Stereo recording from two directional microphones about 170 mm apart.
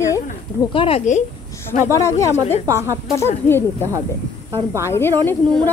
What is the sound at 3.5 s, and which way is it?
Speech, 15° left (ahead or behind).